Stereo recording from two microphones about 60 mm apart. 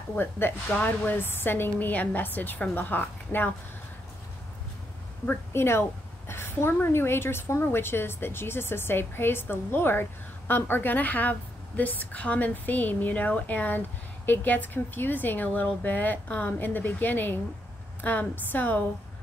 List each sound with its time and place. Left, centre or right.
0.1 s a woman's voice: left
0.7 s speech: left
1.1 s a woman's voice: left
5.5 s a woman's voice: left